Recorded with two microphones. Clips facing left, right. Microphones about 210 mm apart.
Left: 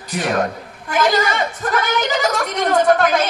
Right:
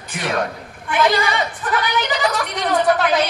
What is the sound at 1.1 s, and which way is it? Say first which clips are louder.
A woman's voice: left 1 dB; 45° left (ahead or behind).